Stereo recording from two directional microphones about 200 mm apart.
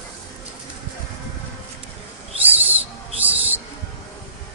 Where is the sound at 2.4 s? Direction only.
10° right (ahead or behind).